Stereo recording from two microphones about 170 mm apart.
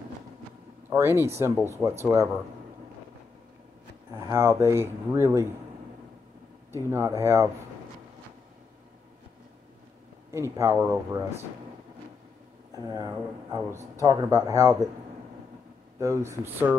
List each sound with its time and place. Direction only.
0.8 s speech: 15° right (ahead or behind)
4.1 s speech: 15° right (ahead or behind)
6.7 s speech: 15° right (ahead or behind)
10.3 s speech: 15° right (ahead or behind)
12.7 s speech: 20° right (ahead or behind)
16.0 s speech: 15° right (ahead or behind)